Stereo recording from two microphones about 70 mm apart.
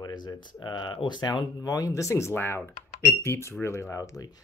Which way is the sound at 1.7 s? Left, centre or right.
Left.